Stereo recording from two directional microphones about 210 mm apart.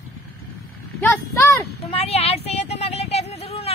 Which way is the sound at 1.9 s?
30° left (ahead or behind).